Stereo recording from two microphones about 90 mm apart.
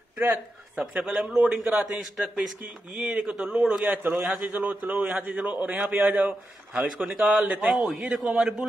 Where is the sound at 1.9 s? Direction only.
5° right (ahead or behind); by 4.2 s 20° right (ahead or behind).